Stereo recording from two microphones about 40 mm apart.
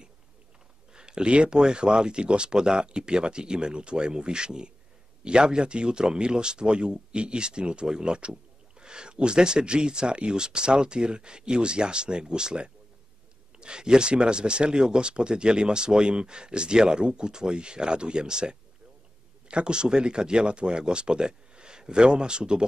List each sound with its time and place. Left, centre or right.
0.9 s speech: right